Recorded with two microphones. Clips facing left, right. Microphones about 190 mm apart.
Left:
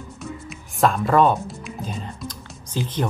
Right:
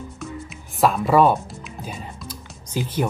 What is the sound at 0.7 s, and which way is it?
Speech, centre (ahead or behind).